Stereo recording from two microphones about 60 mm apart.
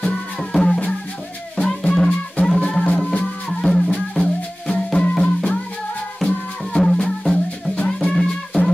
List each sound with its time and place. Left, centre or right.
0.0 s music: centre
6.8 s music: centre